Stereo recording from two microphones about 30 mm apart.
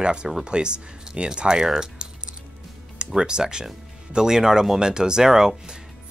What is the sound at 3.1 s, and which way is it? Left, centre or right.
Speech, right.